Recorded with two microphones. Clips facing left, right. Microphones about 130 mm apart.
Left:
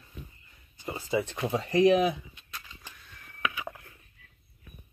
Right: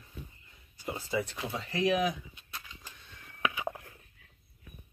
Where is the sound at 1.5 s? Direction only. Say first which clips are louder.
Left 7 dB; 35° left (ahead or behind).